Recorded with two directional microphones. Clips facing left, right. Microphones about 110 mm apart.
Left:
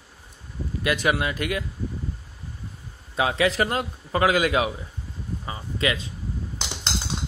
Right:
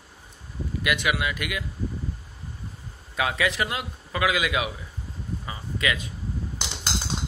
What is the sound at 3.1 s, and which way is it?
Speech, 30° left (ahead or behind).